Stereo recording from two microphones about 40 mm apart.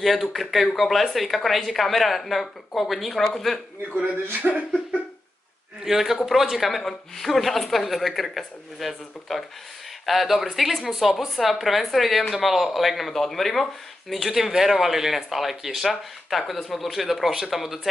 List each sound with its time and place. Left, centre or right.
0.0 s speech: centre
3.9 s speech: right
5.9 s speech: centre